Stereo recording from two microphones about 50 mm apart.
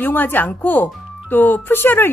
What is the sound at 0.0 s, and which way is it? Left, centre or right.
Speech, left.